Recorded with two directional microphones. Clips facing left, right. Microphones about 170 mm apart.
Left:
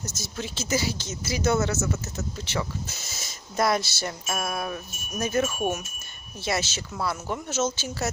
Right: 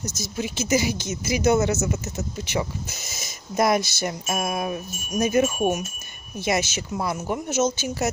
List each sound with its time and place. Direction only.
0.0 s speech: 15° right (ahead or behind)